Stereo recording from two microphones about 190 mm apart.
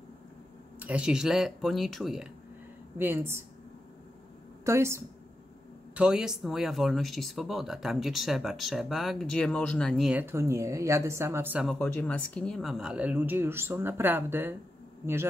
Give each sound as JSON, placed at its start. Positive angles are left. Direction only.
{"t": 0.7, "sound": "speech", "side_deg": -5}
{"t": 3.0, "sound": "speech", "side_deg": -10}
{"t": 4.6, "sound": "speech", "side_deg": -15}
{"t": 5.9, "sound": "speech", "side_deg": -5}
{"t": 11.6, "sound": "speech", "side_deg": 5}